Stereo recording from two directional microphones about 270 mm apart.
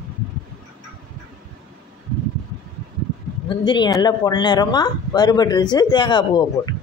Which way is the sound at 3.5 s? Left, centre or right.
Centre.